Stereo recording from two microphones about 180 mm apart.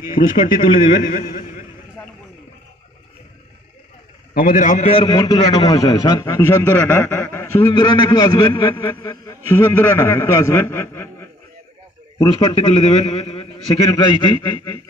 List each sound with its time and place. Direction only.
0.1 s a man's voice: 50° left (ahead or behind)
4.3 s a man's voice: 50° left (ahead or behind); by 11.2 s 15° left (ahead or behind)
12.2 s a man's voice: 25° left (ahead or behind)
13.9 s a man's voice: 25° left (ahead or behind)